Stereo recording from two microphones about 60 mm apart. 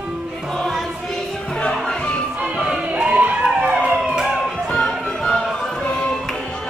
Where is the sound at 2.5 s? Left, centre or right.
Centre.